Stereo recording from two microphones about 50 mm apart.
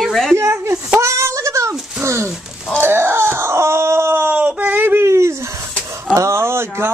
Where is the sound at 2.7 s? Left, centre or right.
Right.